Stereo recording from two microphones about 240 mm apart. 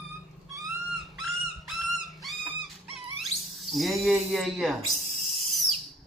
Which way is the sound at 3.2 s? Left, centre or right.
Centre.